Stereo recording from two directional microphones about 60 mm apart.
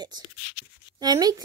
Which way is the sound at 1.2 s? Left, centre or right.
Right.